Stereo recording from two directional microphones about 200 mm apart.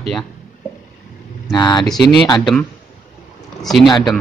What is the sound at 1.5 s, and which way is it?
Speech, 20° left (ahead or behind).